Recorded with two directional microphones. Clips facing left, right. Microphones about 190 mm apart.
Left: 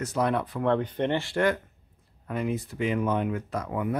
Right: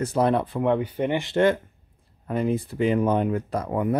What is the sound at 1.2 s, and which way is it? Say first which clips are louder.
Speech: right 5 dB; 25° right (ahead or behind).